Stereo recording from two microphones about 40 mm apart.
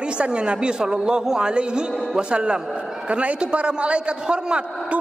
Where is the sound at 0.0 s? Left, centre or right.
Right.